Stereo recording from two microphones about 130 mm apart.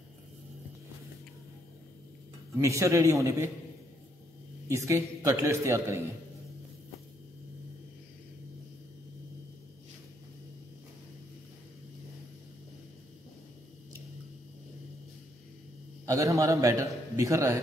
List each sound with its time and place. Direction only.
2.5 s a man's voice: 25° right (ahead or behind)
4.6 s a man's voice: 20° right (ahead or behind)
16.1 s a man's voice: 25° right (ahead or behind)